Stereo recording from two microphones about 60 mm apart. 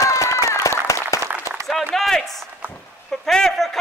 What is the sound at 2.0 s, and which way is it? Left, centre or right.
A man's voice, centre.